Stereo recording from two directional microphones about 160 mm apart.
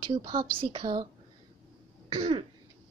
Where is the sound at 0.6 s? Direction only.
35° right (ahead or behind).